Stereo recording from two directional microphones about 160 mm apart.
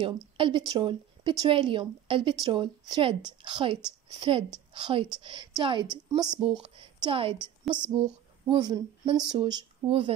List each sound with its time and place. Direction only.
0.0 s a woman's voice: 30° right (ahead or behind)